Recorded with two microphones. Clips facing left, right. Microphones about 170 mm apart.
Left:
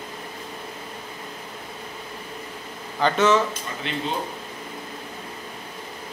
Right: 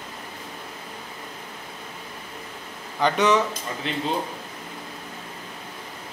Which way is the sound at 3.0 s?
15° right (ahead or behind).